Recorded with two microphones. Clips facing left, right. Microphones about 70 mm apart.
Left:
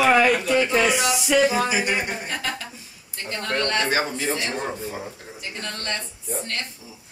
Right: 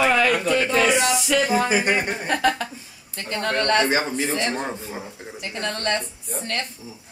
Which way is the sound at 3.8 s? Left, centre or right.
Right.